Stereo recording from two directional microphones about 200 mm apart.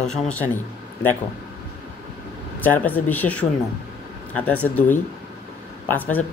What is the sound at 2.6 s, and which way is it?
Speech, 10° left (ahead or behind).